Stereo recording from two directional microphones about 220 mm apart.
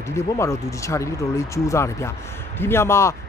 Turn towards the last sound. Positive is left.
turn(degrees=10)  # may be behind; listen again after turning